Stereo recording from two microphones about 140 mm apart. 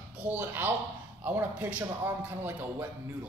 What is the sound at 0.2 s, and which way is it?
A man's voice, 10° right (ahead or behind).